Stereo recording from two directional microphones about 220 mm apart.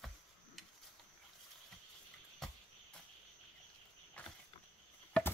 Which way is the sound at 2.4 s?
Centre (ahead or behind).